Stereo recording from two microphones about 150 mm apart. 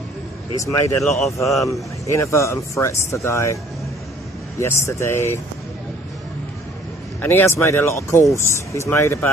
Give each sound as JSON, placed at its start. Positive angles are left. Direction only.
{"t": 0.6, "sound": "speech", "side_deg": 20}
{"t": 1.2, "sound": "speech", "side_deg": 0}
{"t": 1.7, "sound": "speech", "side_deg": 20}
{"t": 4.6, "sound": "speech", "side_deg": 20}
{"t": 7.2, "sound": "speech", "side_deg": 15}